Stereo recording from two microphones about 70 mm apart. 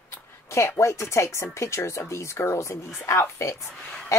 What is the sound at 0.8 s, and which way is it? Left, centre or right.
A woman's voice, left.